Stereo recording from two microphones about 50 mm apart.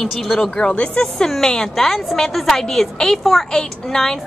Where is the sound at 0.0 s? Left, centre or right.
Centre.